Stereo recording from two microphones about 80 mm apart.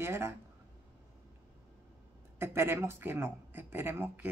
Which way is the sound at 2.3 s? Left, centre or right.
Right.